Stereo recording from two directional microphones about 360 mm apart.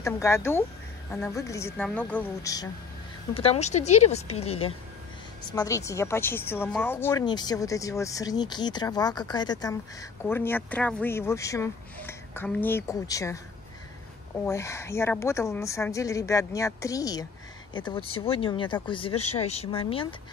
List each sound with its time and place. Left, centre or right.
0.0 s speech: centre
14.4 s speech: centre